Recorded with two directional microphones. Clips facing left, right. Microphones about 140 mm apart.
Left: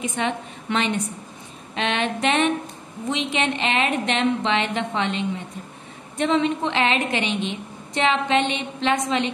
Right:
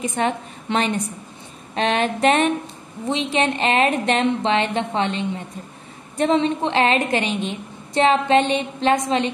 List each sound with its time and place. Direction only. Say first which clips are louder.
0.0 s a woman's voice: right 3 dB; 40° right (ahead or behind)